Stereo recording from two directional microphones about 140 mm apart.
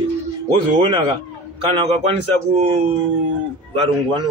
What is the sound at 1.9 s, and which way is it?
Speech, 45° right (ahead or behind).